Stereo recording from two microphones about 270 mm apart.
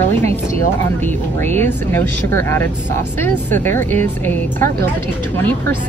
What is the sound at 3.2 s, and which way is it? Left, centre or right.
Speech, centre.